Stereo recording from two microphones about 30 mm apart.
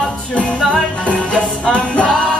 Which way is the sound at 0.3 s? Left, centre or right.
Left.